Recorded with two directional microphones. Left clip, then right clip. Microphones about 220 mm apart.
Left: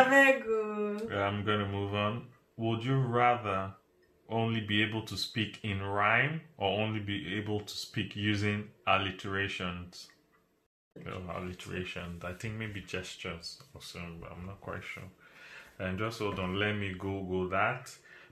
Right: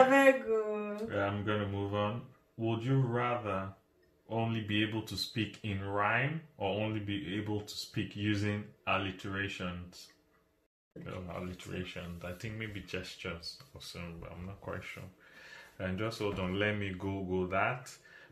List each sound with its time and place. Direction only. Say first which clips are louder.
0.0 s a sound: left 1 dB; centre (ahead or behind)
0.7 s speech: left 2 dB; 5° left (ahead or behind)
11.1 s speech: left 3 dB; centre (ahead or behind)